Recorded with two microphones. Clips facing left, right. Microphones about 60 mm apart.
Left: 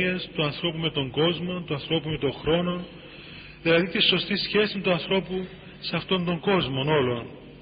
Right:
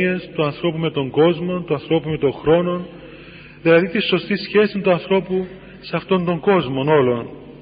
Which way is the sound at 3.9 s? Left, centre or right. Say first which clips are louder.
Right 6 dB; right.